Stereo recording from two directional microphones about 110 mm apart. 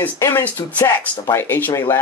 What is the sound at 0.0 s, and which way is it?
Speech, 20° left (ahead or behind).